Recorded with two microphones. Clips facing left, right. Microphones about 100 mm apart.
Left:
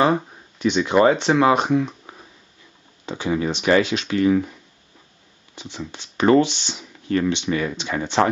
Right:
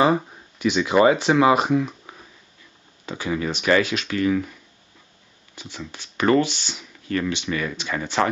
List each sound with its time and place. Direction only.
0.0 s speech: centre (ahead or behind)
3.1 s speech: 25° left (ahead or behind)
5.9 s speech: 25° left (ahead or behind)